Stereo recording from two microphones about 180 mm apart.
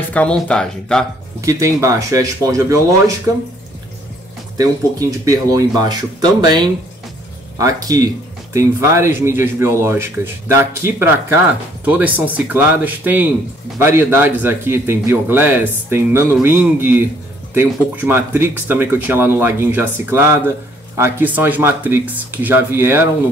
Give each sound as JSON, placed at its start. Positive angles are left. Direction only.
{"t": 0.1, "sound": "speech", "side_deg": 5}
{"t": 1.4, "sound": "speech", "side_deg": -15}
{"t": 4.6, "sound": "speech", "side_deg": -20}
{"t": 7.5, "sound": "speech", "side_deg": -20}